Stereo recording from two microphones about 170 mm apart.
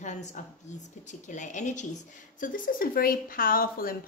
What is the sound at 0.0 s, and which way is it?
A woman's voice, 45° left (ahead or behind).